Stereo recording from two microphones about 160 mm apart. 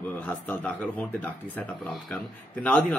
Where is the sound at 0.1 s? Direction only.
10° left (ahead or behind).